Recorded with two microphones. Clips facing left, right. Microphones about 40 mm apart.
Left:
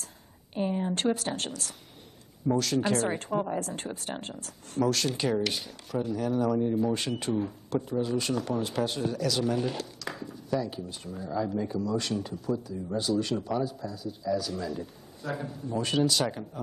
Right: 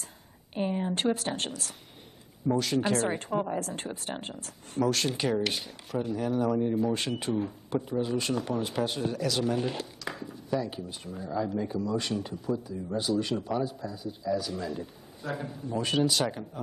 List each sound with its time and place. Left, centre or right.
0.6 s speech: centre
7.9 s speech: centre
8.2 s a man's voice: centre